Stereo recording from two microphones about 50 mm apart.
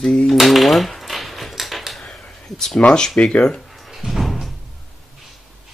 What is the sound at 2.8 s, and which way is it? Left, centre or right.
Speech, centre.